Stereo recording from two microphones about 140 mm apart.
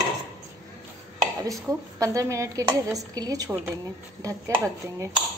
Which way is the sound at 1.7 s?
20° right (ahead or behind).